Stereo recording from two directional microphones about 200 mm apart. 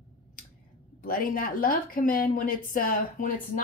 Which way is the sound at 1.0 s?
45° left (ahead or behind).